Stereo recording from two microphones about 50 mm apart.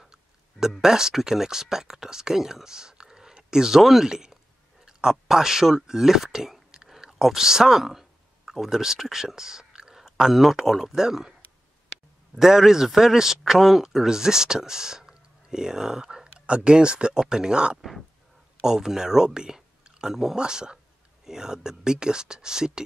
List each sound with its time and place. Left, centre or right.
0.0 s speech: centre
12.4 s speech: centre